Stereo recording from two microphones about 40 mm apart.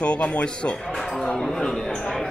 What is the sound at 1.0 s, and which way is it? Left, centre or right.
A man's voice, centre.